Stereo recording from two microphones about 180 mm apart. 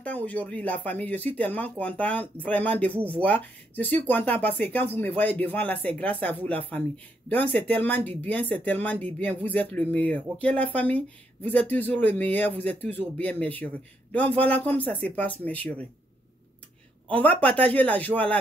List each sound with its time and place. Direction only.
0.0 s speech: 10° left (ahead or behind)
17.1 s speech: 10° left (ahead or behind)